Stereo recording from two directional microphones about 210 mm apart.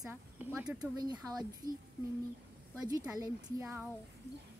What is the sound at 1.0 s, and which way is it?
Speech, 20° right (ahead or behind).